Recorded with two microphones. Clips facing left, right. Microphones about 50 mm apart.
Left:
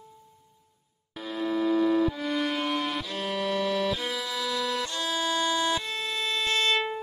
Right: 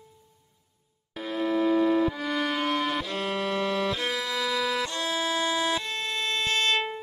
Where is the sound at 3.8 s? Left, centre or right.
Centre.